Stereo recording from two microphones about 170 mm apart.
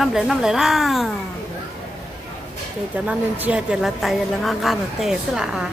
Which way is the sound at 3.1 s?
5° right (ahead or behind).